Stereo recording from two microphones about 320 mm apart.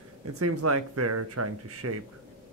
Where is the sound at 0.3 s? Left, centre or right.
Right.